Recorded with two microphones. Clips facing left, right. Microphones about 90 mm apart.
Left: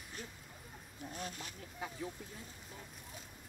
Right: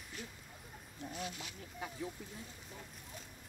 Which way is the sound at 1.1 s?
40° left (ahead or behind).